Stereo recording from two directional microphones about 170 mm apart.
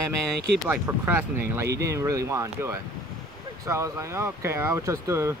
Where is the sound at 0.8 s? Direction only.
10° right (ahead or behind).